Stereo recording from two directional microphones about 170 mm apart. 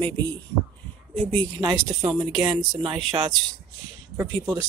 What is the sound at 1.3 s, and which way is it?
Speech, 25° right (ahead or behind).